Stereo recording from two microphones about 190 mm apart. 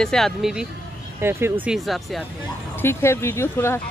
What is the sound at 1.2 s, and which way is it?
Speech, 10° right (ahead or behind).